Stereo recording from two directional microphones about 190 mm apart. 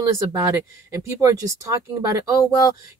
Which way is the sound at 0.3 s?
15° right (ahead or behind).